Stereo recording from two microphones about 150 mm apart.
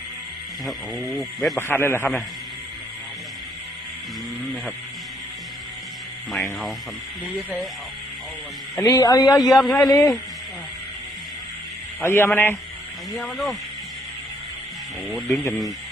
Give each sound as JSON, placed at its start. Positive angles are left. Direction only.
{"t": 0.7, "sound": "speech", "side_deg": 0}
{"t": 1.6, "sound": "a man's voice", "side_deg": 15}
{"t": 8.7, "sound": "a man's voice", "side_deg": 25}
{"t": 9.4, "sound": "speech", "side_deg": 0}
{"t": 12.0, "sound": "a man's voice", "side_deg": 15}
{"t": 13.1, "sound": "speech", "side_deg": 0}
{"t": 15.0, "sound": "speech", "side_deg": 5}